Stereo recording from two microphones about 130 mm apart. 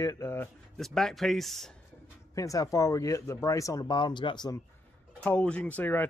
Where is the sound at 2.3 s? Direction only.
25° left (ahead or behind).